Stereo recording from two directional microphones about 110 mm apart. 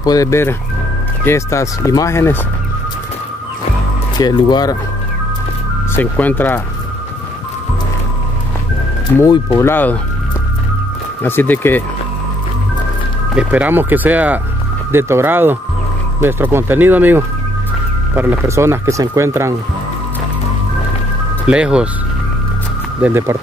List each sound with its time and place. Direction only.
0.0 s speech: 35° left (ahead or behind)
4.2 s speech: 40° left (ahead or behind)
5.9 s speech: 15° left (ahead or behind)
9.1 s speech: 20° left (ahead or behind)
11.2 s speech: 20° left (ahead or behind)
13.3 s speech: 10° right (ahead or behind)
18.5 s speech: 25° right (ahead or behind)
21.5 s speech: 10° right (ahead or behind)
23.0 s speech: 25° right (ahead or behind)